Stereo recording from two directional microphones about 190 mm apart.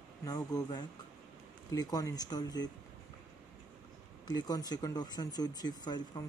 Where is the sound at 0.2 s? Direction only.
20° left (ahead or behind).